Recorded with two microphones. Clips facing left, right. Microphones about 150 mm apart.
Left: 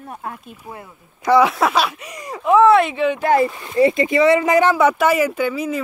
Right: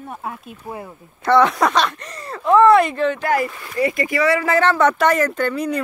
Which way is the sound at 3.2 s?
25° left (ahead or behind).